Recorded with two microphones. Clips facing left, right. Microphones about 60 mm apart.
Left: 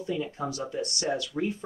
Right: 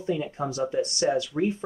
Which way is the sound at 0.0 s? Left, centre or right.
Right.